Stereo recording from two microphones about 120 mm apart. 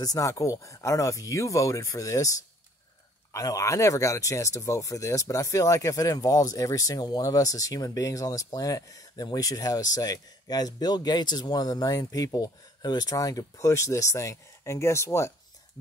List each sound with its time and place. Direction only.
0.0 s speech: 30° left (ahead or behind)
3.3 s speech: 25° left (ahead or behind)